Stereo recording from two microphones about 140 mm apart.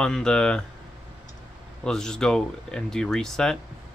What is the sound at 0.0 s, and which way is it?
Speech, 5° left (ahead or behind).